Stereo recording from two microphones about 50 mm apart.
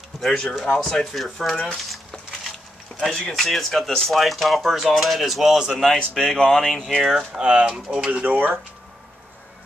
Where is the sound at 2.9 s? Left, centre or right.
Left.